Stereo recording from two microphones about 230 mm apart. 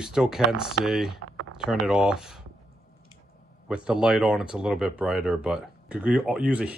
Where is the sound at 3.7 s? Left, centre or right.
Centre.